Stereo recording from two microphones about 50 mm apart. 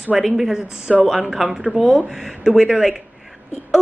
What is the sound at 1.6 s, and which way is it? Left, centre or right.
Speech, right.